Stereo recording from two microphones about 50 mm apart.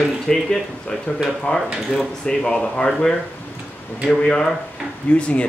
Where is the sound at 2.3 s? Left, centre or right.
Centre.